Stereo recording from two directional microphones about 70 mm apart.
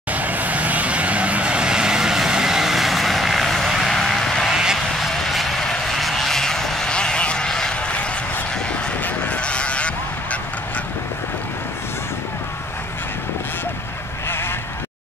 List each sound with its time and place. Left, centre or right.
0.1 s vehicle: right; by 4.5 s centre
4.5 s honk: centre
4.7 s vehicle: centre
9.0 s honk: centre